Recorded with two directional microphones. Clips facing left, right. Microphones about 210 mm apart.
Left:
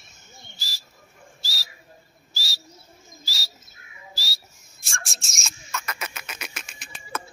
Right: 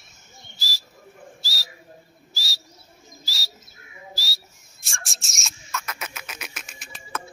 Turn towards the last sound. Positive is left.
turn(degrees=-5)  # may be behind; listen again after turning